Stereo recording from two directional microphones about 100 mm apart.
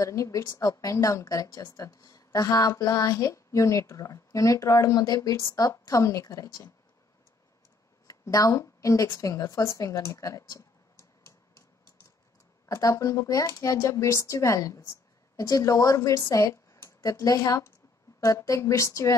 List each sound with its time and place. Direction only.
0.0 s speech: 35° left (ahead or behind)
8.1 s a woman's voice: 35° left (ahead or behind)
12.6 s speech: 35° left (ahead or behind)